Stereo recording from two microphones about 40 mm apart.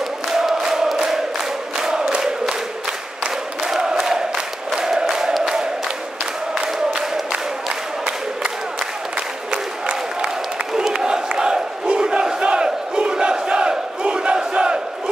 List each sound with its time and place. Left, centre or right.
0.3 s music: centre
0.9 s a sound: centre
3.6 s a sound: centre
4.7 s chant: centre
5.4 s crowd: centre
9.5 s crowd: right